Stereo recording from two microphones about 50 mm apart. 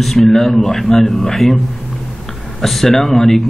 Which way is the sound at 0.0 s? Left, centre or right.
Centre.